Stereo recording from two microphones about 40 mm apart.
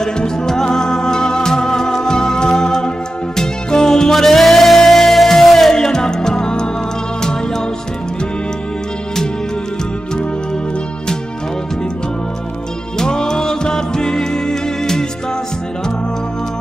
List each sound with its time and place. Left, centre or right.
0.0 s music: centre
12.9 s music: centre